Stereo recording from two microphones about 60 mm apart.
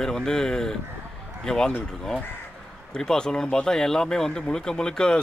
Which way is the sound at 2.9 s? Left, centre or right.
Centre.